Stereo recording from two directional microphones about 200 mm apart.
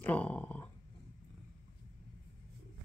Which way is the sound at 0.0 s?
5° left (ahead or behind).